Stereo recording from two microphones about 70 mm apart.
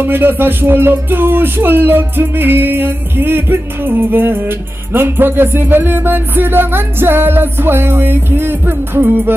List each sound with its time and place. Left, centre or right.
0.0 s music: right